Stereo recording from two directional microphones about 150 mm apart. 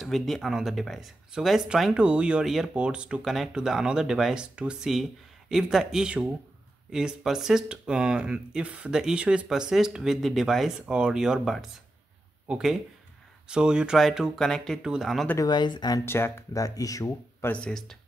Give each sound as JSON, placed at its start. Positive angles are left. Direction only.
{"t": 0.0, "sound": "speech", "side_deg": 0}
{"t": 15.2, "sound": "speech", "side_deg": 25}
{"t": 16.1, "sound": "speech", "side_deg": 15}